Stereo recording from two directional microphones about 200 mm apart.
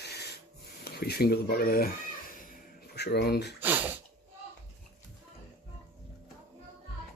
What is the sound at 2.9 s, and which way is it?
Speech, 55° left (ahead or behind).